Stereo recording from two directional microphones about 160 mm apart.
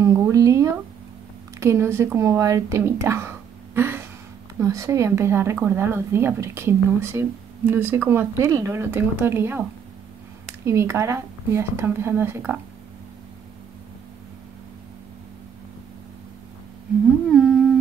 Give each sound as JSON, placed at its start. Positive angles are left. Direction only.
{"t": 0.0, "sound": "a sound", "side_deg": -20}
{"t": 1.6, "sound": "speech", "side_deg": -15}
{"t": 10.6, "sound": "speech", "side_deg": -15}
{"t": 17.3, "sound": "humming", "side_deg": -5}